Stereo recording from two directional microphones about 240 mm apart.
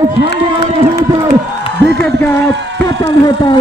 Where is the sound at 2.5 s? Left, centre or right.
Right.